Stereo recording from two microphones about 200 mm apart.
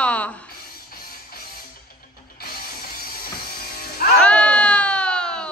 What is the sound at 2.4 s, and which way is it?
Music, 50° left (ahead or behind).